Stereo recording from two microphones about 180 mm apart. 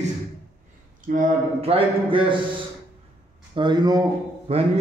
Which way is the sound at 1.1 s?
50° right (ahead or behind).